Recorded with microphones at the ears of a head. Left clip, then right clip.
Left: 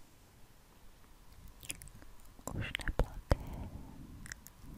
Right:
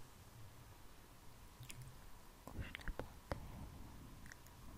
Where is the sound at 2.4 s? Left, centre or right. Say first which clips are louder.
Left 12 dB; left.